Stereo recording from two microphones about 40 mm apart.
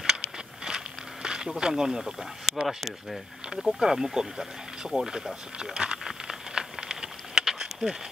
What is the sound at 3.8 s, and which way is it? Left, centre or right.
Speech, centre.